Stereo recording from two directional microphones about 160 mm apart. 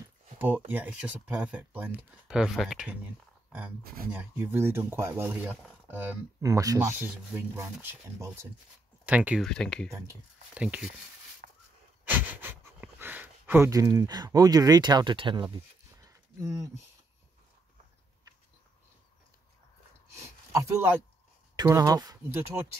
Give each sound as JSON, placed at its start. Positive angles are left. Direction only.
{"t": 0.7, "sound": "speech", "side_deg": -10}
{"t": 3.8, "sound": "speech", "side_deg": -70}
{"t": 4.1, "sound": "speech", "side_deg": -10}
{"t": 9.4, "sound": "speech", "side_deg": 5}
{"t": 9.8, "sound": "speech", "side_deg": -15}
{"t": 11.4, "sound": "a sound", "side_deg": -60}
{"t": 12.0, "sound": "pant", "side_deg": -10}
{"t": 20.2, "sound": "a sound", "side_deg": -20}
{"t": 21.5, "sound": "speech", "side_deg": -20}